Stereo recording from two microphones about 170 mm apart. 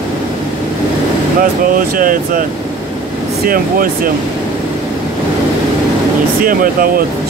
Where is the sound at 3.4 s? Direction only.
55° right (ahead or behind).